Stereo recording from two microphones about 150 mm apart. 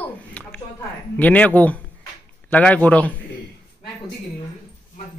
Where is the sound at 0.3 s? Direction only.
10° left (ahead or behind).